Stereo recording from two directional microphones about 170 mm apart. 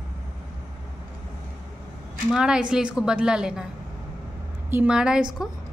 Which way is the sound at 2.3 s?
5° right (ahead or behind).